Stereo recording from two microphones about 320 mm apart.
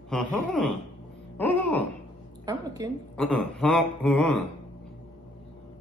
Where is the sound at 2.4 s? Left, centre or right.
Centre.